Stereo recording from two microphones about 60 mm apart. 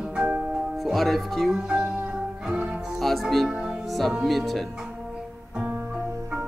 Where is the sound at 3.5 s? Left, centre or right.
Centre.